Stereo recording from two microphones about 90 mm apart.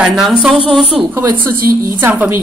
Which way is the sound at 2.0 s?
25° right (ahead or behind).